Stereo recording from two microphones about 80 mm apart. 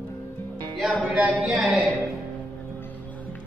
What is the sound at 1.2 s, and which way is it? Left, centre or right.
Speech, centre.